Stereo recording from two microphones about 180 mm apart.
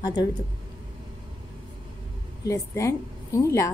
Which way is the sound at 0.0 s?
20° left (ahead or behind).